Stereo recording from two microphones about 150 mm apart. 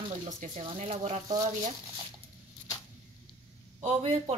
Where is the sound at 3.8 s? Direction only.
45° right (ahead or behind).